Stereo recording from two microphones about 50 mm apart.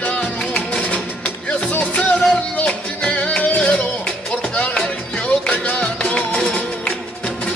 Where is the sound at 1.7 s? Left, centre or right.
Left.